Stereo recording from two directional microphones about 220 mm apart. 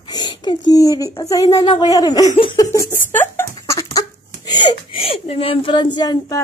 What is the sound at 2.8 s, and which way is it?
Speech, 10° left (ahead or behind).